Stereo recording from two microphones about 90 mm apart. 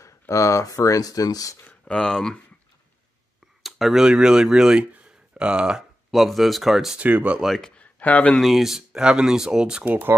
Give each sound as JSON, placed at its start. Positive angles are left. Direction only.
{"t": 0.0, "sound": "speech", "side_deg": 35}
{"t": 1.6, "sound": "speech", "side_deg": 10}
{"t": 3.6, "sound": "speech", "side_deg": 0}
{"t": 7.0, "sound": "speech", "side_deg": -15}
{"t": 7.4, "sound": "speech", "side_deg": 5}
{"t": 8.4, "sound": "speech", "side_deg": -5}